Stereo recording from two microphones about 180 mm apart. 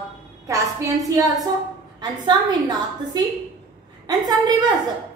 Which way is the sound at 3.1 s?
20° right (ahead or behind).